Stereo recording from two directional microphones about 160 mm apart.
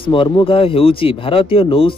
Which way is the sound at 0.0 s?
30° left (ahead or behind).